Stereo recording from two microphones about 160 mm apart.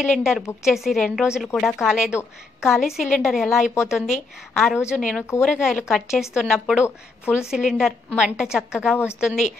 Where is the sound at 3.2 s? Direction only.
Centre (ahead or behind).